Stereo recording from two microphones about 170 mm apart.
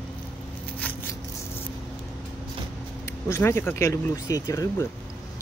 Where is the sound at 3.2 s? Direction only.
15° left (ahead or behind).